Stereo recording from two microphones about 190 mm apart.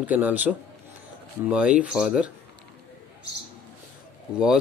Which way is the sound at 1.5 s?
5° right (ahead or behind).